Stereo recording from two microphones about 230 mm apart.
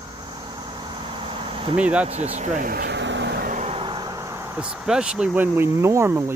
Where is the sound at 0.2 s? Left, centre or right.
Centre.